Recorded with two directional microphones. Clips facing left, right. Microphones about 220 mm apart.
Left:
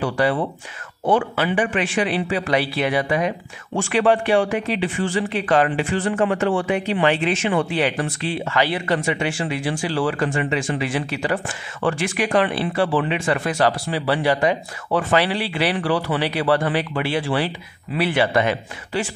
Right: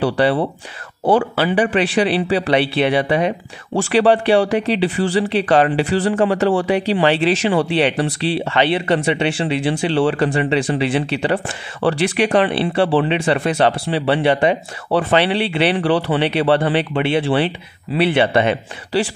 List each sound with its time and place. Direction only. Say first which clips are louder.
0.0 s a man's voice: right 4 dB; 30° right (ahead or behind)